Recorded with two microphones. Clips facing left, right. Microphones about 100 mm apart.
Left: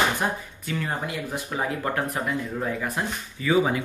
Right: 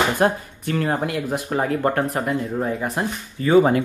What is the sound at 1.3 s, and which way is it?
Speech, 40° right (ahead or behind).